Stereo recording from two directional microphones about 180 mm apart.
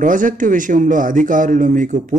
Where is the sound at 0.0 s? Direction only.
45° right (ahead or behind).